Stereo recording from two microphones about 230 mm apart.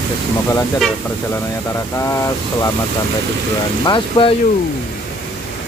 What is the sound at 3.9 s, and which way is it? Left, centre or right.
Speech, left.